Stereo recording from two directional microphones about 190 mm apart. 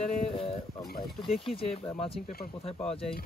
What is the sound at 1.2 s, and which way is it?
Speech, centre (ahead or behind).